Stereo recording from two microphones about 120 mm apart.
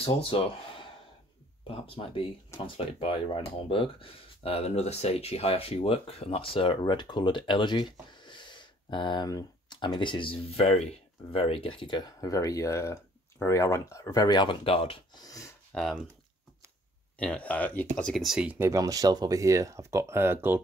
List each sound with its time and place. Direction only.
0.0 s speech: 50° left (ahead or behind)
15.1 s speech: 30° left (ahead or behind)
15.7 s speech: 5° left (ahead or behind)
17.2 s speech: 10° left (ahead or behind); by 18.7 s 10° right (ahead or behind)
18.7 s speech: 30° right (ahead or behind)